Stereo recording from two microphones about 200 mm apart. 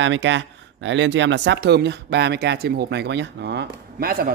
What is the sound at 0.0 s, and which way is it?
Speech, 65° right (ahead or behind).